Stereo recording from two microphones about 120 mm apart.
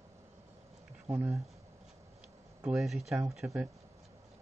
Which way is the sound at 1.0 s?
10° right (ahead or behind).